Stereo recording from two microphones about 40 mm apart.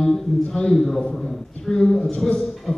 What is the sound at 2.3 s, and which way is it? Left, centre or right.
Speech, centre.